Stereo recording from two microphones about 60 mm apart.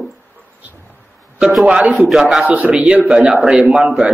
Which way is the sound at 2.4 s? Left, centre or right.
Right.